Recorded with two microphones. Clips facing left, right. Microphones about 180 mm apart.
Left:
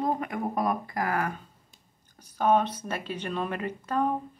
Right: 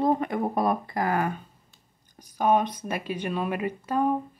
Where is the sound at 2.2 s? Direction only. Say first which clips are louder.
Right 1 dB; 10° right (ahead or behind).